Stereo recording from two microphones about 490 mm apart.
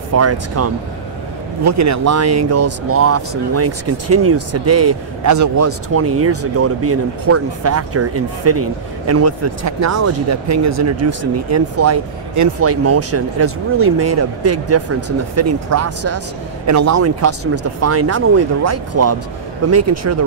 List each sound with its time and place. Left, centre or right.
0.1 s speech: right